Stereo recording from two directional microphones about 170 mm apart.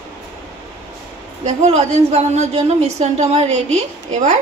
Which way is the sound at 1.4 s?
40° right (ahead or behind).